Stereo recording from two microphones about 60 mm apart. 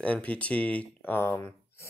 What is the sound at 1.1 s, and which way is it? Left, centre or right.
Speech, left.